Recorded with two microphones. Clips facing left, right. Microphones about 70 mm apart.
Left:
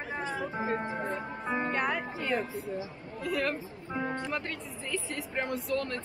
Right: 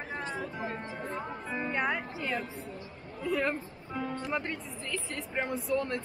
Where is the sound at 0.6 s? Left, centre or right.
Left.